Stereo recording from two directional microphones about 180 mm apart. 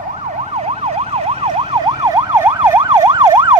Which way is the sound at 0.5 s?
35° right (ahead or behind).